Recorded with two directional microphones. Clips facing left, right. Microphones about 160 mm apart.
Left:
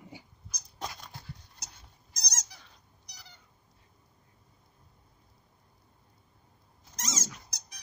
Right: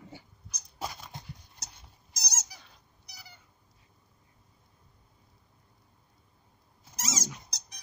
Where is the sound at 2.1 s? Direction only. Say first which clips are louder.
Right 2 dB; 5° right (ahead or behind).